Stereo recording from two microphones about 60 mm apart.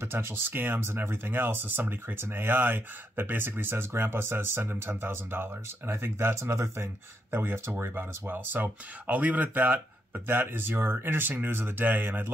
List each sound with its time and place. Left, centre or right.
0.0 s speech: right
7.2 s speech: right